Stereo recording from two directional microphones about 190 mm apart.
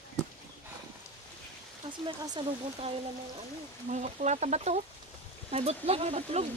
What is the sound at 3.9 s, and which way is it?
Speech, 40° right (ahead or behind).